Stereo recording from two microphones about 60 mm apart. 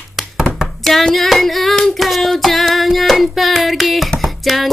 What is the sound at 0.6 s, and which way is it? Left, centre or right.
Hands, centre.